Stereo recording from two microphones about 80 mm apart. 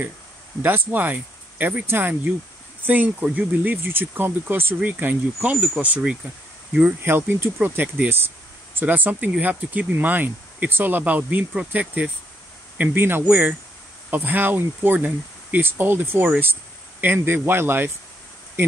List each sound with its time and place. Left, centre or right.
0.6 s speech: right
7.0 s speech: right